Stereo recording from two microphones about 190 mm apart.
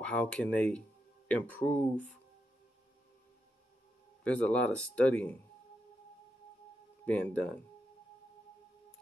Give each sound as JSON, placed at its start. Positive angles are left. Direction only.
{"t": 0.0, "sound": "speech", "side_deg": 5}
{"t": 4.2, "sound": "speech", "side_deg": 5}
{"t": 7.1, "sound": "speech", "side_deg": 5}